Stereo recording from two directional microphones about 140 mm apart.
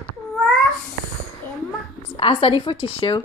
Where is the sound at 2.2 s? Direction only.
40° left (ahead or behind).